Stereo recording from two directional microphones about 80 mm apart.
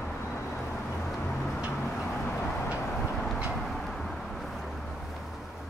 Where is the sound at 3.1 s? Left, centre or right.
Centre.